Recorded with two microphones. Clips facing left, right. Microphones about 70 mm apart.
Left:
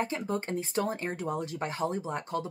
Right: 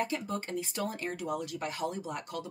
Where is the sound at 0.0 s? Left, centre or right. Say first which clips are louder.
Left 2 dB; left.